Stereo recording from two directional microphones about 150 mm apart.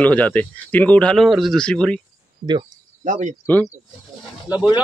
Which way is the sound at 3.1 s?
55° right (ahead or behind).